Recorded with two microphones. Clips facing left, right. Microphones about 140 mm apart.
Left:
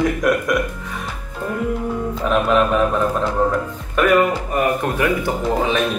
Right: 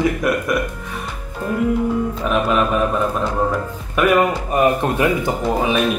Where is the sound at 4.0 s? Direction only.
10° right (ahead or behind).